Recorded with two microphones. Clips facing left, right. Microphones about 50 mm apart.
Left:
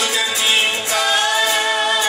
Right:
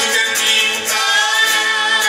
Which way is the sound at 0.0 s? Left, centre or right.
Right.